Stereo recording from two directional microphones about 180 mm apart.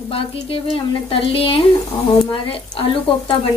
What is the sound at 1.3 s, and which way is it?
Speech, 30° left (ahead or behind).